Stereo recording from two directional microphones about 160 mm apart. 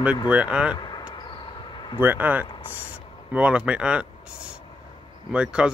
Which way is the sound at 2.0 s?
10° right (ahead or behind).